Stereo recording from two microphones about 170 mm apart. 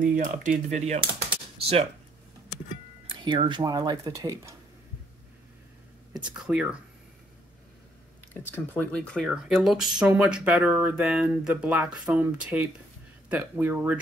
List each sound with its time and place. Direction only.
0.0 s speech: 50° right (ahead or behind)
3.1 s speech: 30° right (ahead or behind)
6.3 s speech: 5° right (ahead or behind)
8.3 s speech: 10° left (ahead or behind); by 13.9 s 10° right (ahead or behind)